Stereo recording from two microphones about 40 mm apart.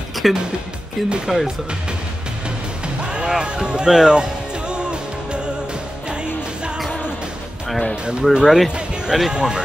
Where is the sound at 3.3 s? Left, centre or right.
Right.